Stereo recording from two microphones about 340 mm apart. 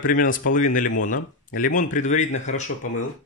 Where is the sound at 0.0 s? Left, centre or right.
Left.